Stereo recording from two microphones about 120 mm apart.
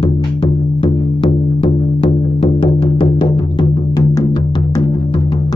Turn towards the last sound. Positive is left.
turn(degrees=30)  # may be behind; listen again after turning